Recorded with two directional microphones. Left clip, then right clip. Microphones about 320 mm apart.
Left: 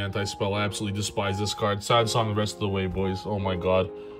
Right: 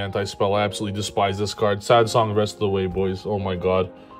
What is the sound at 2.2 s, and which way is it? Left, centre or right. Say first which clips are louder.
Speech: right 6 dB; centre.